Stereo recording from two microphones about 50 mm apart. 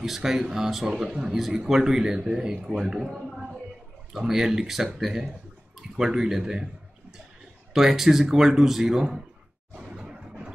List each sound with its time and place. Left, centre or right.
0.0 s a man's voice: centre
7.7 s a man's voice: centre
9.8 s a sound: centre